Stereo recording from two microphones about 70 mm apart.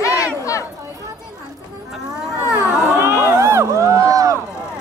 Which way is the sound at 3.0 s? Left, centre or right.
Right.